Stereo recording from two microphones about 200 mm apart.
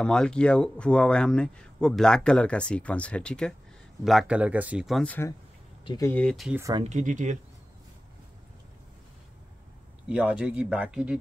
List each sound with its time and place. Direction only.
0.0 s speech: 5° left (ahead or behind)
6.5 s speech: 15° right (ahead or behind)
6.8 s speech: 35° right (ahead or behind)
10.0 s speech: 5° right (ahead or behind)